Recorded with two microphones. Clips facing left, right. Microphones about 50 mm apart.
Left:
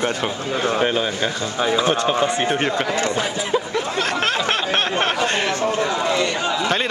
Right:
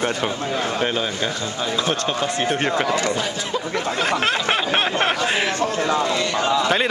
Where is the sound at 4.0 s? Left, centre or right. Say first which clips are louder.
Even; centre.